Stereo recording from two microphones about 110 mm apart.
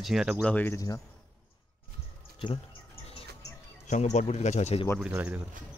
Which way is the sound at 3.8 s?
90° left.